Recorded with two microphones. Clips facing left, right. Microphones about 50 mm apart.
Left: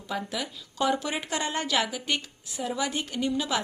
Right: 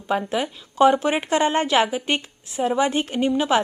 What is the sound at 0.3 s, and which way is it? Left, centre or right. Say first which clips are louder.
A woman's voice: right 9 dB; right.